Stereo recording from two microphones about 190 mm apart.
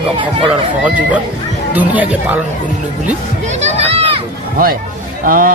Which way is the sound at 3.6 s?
35° right (ahead or behind).